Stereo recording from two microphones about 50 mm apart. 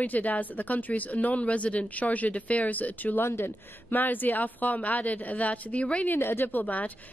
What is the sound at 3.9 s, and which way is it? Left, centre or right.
A woman's voice, left.